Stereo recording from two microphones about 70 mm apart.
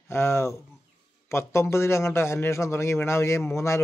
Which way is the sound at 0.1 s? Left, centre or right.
Left.